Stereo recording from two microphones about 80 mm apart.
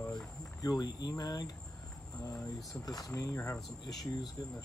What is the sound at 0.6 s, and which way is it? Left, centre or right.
Speech, left.